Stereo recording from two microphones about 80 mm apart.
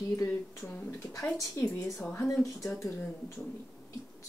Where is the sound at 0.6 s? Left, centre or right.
Left.